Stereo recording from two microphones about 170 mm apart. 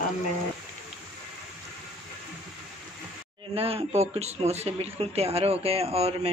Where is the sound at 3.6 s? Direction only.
35° right (ahead or behind).